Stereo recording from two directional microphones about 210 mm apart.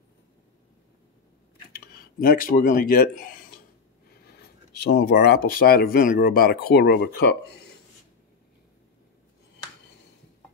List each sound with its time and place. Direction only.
1.7 s speech: 45° left (ahead or behind)
4.1 s speech: 50° left (ahead or behind)